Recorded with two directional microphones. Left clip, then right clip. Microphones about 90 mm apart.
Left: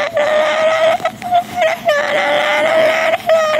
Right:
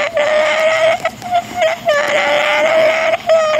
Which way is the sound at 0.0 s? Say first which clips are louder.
Even; 15° left (ahead or behind).